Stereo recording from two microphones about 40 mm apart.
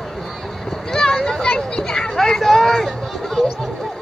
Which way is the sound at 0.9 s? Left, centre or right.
Centre.